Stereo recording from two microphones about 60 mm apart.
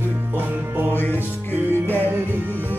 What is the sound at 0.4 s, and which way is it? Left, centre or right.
Music, right.